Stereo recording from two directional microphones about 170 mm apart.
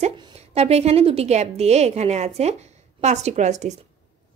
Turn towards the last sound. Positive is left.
turn(degrees=-45)  # may be behind; listen again after turning